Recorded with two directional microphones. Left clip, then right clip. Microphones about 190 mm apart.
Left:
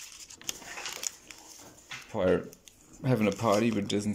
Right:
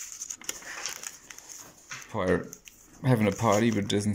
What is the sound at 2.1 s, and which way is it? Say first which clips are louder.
Speech: left 1 dB; 5° left (ahead or behind).